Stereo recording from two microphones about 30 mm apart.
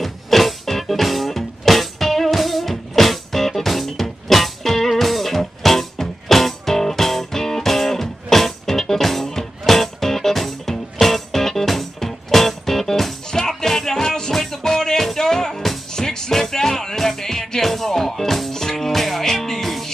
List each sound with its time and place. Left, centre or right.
0.0 s music: centre; by 16.3 s left
16.3 s music: centre
18.5 s music: centre
18.9 s music: centre